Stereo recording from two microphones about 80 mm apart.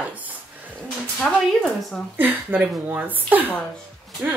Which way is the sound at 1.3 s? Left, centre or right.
Centre.